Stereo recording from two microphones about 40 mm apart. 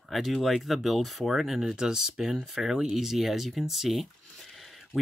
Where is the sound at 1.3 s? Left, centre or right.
Centre.